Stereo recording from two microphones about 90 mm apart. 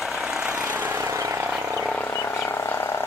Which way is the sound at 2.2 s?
25° left (ahead or behind).